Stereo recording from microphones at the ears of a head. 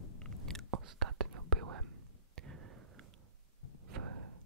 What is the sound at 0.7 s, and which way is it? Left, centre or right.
Whispering, right.